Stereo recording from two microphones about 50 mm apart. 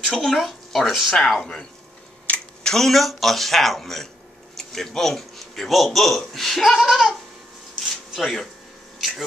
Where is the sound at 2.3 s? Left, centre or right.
Left.